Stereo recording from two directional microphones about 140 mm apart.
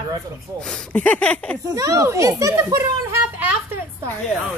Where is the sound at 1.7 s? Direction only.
25° right (ahead or behind).